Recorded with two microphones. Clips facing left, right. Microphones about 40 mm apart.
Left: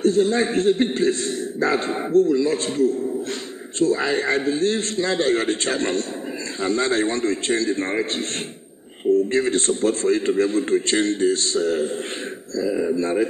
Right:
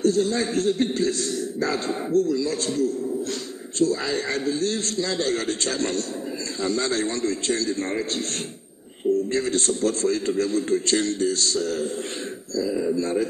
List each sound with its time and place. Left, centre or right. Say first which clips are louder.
0.0 s a man's voice: left 3 dB; left